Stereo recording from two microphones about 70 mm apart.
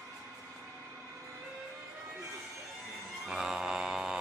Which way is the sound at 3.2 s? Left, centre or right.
Centre.